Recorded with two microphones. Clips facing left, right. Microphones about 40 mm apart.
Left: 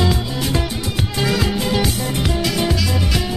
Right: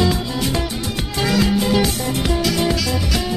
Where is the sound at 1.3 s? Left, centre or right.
Centre.